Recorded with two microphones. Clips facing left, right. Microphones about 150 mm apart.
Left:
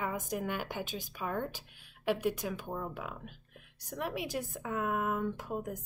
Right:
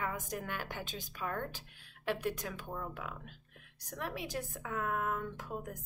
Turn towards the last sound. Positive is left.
turn(degrees=10)  # may be behind; listen again after turning